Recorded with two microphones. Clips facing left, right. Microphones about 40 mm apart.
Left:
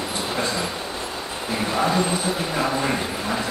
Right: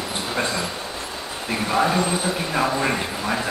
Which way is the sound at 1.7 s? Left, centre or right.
Centre.